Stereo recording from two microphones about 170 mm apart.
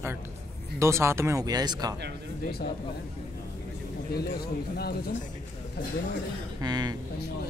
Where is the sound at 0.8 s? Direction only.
15° right (ahead or behind).